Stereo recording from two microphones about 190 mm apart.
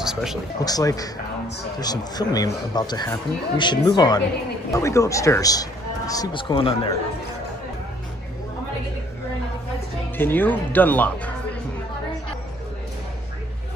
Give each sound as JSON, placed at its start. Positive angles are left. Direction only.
{"t": 0.0, "sound": "a sound", "side_deg": 0}
{"t": 0.6, "sound": "a man's voice", "side_deg": 20}
{"t": 10.1, "sound": "speech", "side_deg": 10}